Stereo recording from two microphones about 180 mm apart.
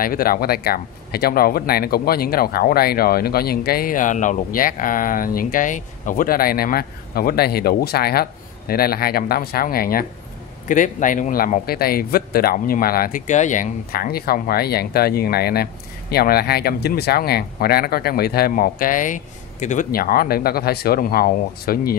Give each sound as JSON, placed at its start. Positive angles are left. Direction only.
{"t": 0.0, "sound": "a man's voice", "side_deg": 55}